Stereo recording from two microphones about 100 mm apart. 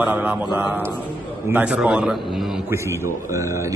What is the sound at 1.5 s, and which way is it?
Speech, 15° right (ahead or behind).